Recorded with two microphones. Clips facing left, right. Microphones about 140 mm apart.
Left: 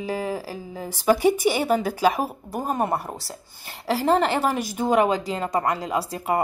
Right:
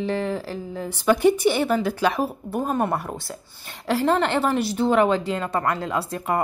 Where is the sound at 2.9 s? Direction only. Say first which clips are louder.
Right 1 dB; 35° left (ahead or behind).